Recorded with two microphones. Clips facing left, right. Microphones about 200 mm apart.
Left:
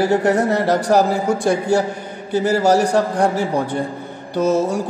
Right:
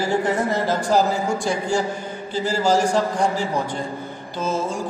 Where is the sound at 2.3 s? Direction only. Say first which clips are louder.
Left 5 dB; 65° left (ahead or behind).